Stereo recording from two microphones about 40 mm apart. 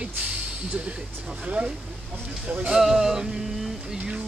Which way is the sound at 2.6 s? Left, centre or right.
Centre.